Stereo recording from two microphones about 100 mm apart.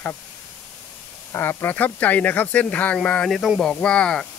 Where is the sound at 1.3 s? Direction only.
25° left (ahead or behind); by 4.2 s 10° left (ahead or behind).